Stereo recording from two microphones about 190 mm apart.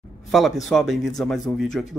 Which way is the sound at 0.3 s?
Centre (ahead or behind).